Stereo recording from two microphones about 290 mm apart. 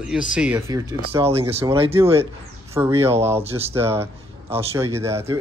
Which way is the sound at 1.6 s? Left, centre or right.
Centre.